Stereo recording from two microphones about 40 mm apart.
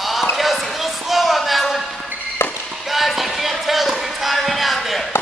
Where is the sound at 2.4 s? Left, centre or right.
Left.